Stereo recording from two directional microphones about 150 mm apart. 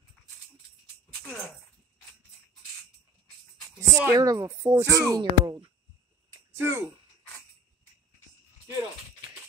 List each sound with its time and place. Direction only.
3.8 s speech: 20° right (ahead or behind)
6.5 s speech: 15° right (ahead or behind)